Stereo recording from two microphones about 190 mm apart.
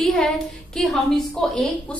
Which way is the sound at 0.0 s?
Centre (ahead or behind).